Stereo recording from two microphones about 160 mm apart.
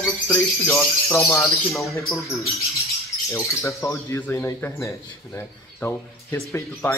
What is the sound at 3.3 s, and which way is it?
Speech, 20° left (ahead or behind).